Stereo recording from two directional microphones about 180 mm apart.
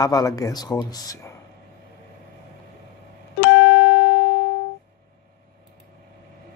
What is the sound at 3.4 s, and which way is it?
Music, 80° left.